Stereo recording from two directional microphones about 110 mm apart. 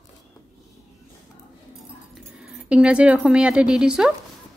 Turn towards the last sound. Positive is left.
turn(degrees=-5)  # may be behind; listen again after turning